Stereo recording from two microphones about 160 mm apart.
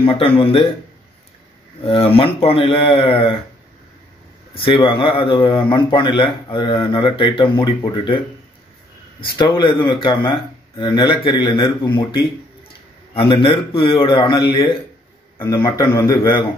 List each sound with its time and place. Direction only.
0.0 s speech: 35° left (ahead or behind)
1.9 s speech: 35° left (ahead or behind)
4.6 s speech: 30° left (ahead or behind)
9.4 s speech: 30° left (ahead or behind)
13.1 s speech: 35° left (ahead or behind)
15.3 s a man's voice: 20° left (ahead or behind)